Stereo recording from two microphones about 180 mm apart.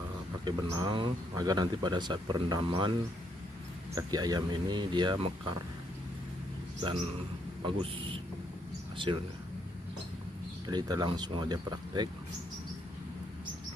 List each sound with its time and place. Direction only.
0.5 s speech: 25° right (ahead or behind)
7.6 s speech: 30° right (ahead or behind)
10.7 s speech: 20° right (ahead or behind)